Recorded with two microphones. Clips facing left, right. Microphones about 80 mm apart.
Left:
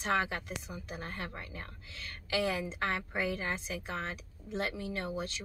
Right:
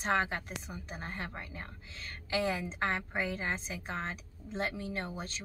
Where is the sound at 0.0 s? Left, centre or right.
Right.